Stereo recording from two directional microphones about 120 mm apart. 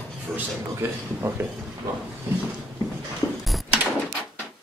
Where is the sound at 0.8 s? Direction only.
20° right (ahead or behind).